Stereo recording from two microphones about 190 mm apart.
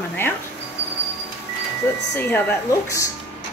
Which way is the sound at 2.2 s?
10° left (ahead or behind).